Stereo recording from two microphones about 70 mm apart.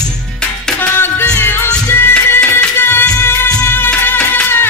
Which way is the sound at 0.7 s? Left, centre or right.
Left.